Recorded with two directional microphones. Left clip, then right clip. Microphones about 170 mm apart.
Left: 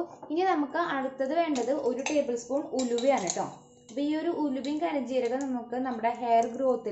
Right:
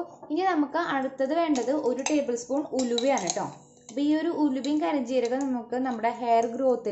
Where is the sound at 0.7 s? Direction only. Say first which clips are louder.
Right 2 dB; 20° right (ahead or behind).